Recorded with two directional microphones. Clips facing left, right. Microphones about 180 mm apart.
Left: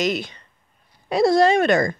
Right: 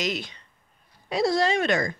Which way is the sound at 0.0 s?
55° left (ahead or behind).